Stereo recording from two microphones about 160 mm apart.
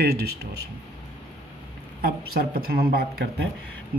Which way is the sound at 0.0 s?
80° right.